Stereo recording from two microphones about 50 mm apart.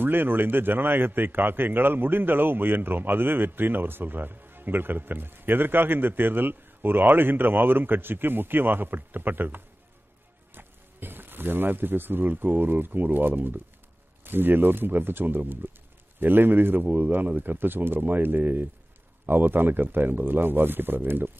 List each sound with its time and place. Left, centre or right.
0.0 s a man's voice: right